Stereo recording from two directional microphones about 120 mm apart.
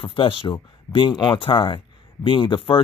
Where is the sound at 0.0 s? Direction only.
45° left (ahead or behind).